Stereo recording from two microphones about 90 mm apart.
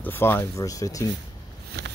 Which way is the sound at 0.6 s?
40° left (ahead or behind).